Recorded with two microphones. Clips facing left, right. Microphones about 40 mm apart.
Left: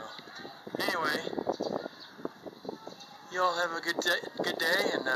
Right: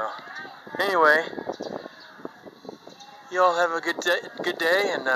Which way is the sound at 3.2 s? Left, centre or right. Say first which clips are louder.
Right 9 dB; right.